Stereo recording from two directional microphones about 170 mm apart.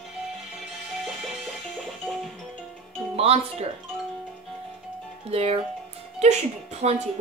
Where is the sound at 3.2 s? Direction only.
35° right (ahead or behind).